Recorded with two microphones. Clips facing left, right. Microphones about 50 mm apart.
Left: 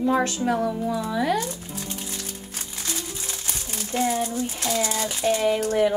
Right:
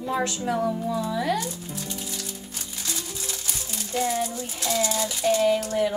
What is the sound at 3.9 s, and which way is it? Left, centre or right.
Speech, left.